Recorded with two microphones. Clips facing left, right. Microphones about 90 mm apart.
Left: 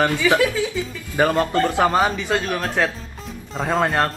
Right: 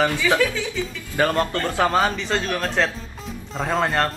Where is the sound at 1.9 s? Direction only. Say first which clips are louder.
Left 1 dB; 5° left (ahead or behind).